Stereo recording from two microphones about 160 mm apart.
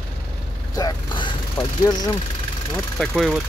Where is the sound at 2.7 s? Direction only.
5° left (ahead or behind).